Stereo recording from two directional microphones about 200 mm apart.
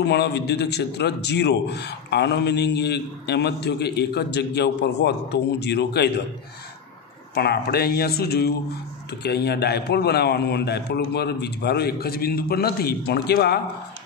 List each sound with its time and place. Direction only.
0.0 s a man's voice: 55° left (ahead or behind)
7.3 s a man's voice: 50° left (ahead or behind)